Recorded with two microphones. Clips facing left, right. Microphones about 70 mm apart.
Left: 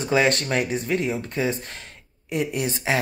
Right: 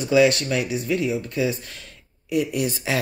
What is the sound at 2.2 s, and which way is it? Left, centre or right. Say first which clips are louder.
Speech: right 2 dB; left.